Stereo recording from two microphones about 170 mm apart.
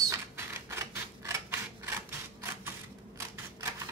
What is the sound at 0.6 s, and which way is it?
Typewriter, 15° right (ahead or behind).